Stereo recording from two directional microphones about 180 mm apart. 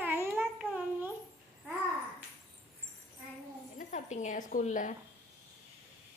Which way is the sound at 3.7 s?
45° left (ahead or behind).